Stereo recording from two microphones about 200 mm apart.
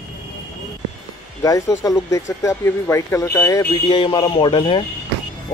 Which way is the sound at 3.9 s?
25° left (ahead or behind).